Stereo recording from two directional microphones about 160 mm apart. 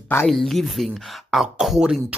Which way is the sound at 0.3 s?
Centre (ahead or behind).